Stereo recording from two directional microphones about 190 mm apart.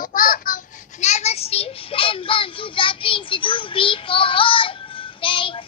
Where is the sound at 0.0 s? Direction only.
50° left (ahead or behind).